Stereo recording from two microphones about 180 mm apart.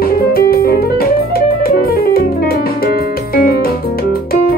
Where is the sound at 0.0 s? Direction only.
55° left (ahead or behind).